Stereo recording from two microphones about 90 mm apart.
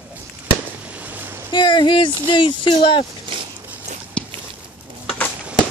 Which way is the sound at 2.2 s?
65° left (ahead or behind).